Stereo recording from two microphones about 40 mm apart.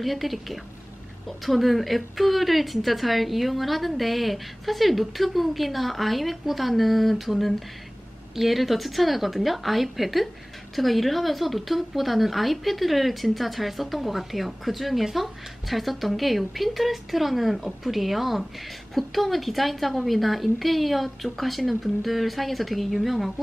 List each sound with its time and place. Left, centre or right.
0.0 s speech: centre